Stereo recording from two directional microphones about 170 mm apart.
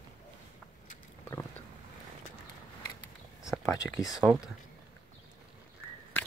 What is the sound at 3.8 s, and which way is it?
Speech, 10° left (ahead or behind).